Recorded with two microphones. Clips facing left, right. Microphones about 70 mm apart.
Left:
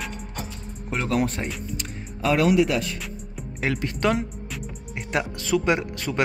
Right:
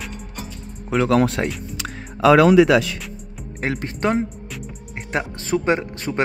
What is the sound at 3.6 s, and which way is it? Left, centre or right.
Speech, right.